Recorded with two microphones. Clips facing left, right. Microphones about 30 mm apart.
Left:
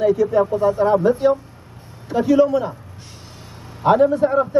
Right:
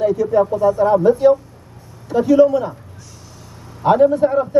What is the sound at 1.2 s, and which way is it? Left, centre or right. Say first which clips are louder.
A man's voice: right 4 dB; centre.